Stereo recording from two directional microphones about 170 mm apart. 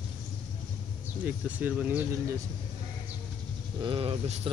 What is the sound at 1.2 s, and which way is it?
Speech, 10° right (ahead or behind).